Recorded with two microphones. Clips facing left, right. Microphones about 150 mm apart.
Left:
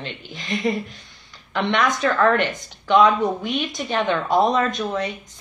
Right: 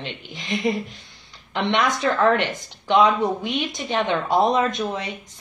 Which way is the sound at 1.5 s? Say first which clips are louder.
Left 1 dB; 20° right (ahead or behind).